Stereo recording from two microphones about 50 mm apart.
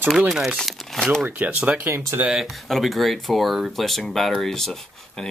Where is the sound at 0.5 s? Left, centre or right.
Centre.